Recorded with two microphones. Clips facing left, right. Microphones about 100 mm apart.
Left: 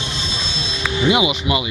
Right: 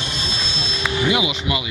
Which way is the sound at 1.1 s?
15° left (ahead or behind).